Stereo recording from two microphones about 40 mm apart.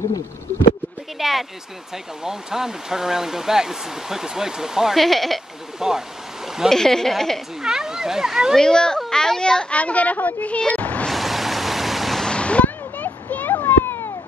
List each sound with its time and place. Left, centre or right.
1.2 s speech: centre
4.9 s speech: centre
5.8 s speech: centre
6.7 s a child's voice: centre
7.6 s speech: centre
8.5 s a child's voice: centre
9.8 s a woman's voice: left
10.7 s a sound: left
11.1 s vehicle: centre
12.3 s a sound: left
12.6 s a sound: left
13.5 s a sound: left